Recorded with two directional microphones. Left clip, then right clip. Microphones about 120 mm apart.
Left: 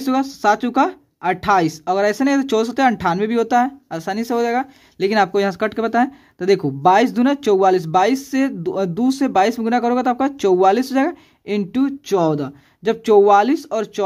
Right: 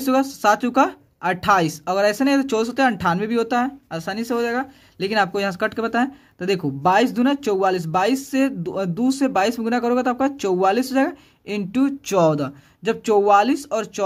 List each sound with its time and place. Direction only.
0.0 s speech: 20° left (ahead or behind)
11.8 s speech: 10° left (ahead or behind)
12.8 s speech: 25° left (ahead or behind)